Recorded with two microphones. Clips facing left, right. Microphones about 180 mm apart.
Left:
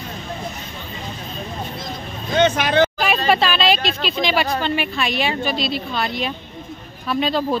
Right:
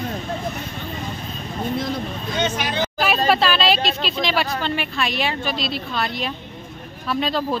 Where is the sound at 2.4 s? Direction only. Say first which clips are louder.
Left 8 dB; 65° left (ahead or behind).